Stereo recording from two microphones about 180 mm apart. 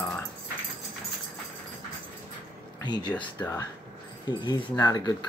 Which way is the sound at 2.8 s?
25° left (ahead or behind).